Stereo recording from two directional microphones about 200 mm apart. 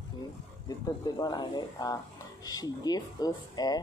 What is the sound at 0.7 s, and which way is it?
Speech, 20° left (ahead or behind).